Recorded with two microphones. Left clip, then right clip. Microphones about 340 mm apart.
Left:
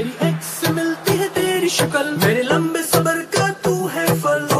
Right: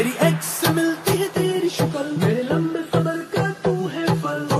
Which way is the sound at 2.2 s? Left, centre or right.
Left.